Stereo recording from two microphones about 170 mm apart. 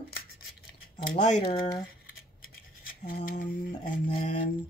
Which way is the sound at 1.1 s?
40° left (ahead or behind).